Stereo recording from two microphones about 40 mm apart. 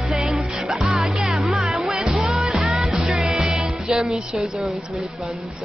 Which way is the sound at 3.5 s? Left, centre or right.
Centre.